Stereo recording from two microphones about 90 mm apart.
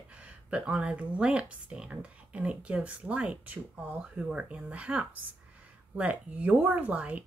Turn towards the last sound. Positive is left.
turn(degrees=-15)  # may be behind; listen again after turning